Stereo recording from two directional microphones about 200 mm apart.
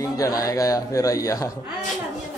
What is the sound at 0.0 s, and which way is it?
A man's voice, 15° left (ahead or behind).